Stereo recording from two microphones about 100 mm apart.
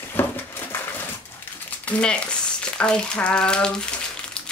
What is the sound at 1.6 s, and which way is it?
Frying, 15° left (ahead or behind).